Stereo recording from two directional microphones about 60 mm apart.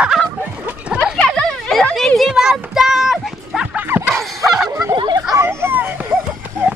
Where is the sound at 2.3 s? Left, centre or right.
Centre.